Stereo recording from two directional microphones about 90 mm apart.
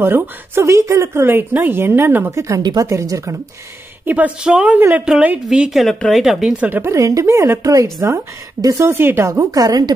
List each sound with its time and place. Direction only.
0.0 s a woman's voice: 25° right (ahead or behind)
2.6 s speech: 45° right (ahead or behind)
2.9 s a woman's voice: 30° right (ahead or behind)
4.0 s a woman's voice: 15° right (ahead or behind)
5.0 s a woman's voice: 10° right (ahead or behind)
6.6 s a woman's voice: 25° right (ahead or behind)
9.3 s a woman's voice: 40° right (ahead or behind)